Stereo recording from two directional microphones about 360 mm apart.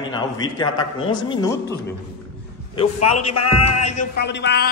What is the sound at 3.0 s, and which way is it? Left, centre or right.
Music, left.